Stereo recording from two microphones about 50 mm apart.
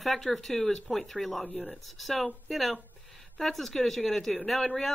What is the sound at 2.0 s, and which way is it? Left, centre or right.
A woman's voice, centre.